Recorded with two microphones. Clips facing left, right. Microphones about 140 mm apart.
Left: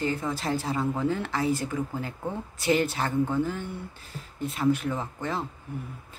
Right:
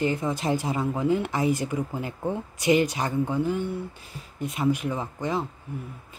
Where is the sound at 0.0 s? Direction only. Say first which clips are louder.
Right 3 dB; 20° right (ahead or behind).